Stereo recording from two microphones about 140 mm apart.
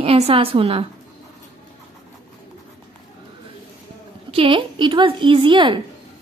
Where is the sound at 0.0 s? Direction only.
45° right (ahead or behind).